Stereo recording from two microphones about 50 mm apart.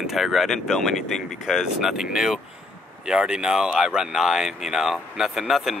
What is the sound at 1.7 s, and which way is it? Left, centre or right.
Speech, centre.